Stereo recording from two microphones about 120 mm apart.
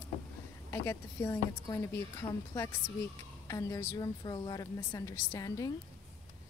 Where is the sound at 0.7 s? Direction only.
20° left (ahead or behind).